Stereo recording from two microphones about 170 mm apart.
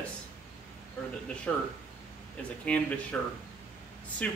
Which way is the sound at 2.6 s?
5° left (ahead or behind).